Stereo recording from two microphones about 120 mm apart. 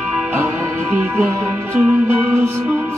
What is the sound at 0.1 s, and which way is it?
Music, 15° right (ahead or behind).